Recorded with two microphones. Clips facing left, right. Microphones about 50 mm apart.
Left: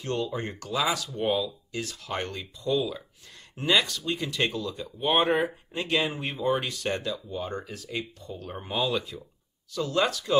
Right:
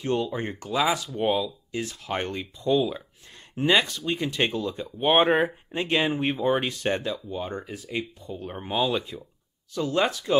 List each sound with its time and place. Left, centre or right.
0.0 s speech: centre